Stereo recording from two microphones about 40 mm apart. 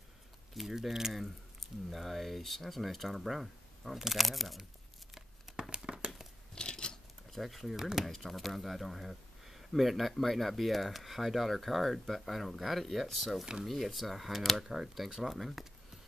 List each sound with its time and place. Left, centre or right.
0.6 s speech: centre
5.6 s crumpling: right
6.5 s scissors: centre
7.3 s speech: centre
14.6 s speech: centre